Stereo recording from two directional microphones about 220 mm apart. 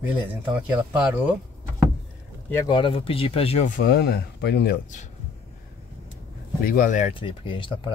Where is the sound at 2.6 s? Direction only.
20° left (ahead or behind).